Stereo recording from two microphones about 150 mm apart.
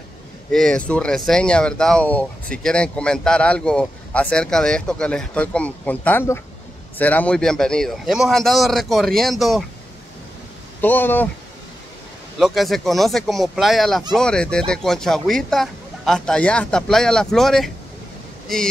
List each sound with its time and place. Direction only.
0.5 s speech: 5° left (ahead or behind)
10.8 s speech: 15° left (ahead or behind)
12.4 s speech: centre (ahead or behind)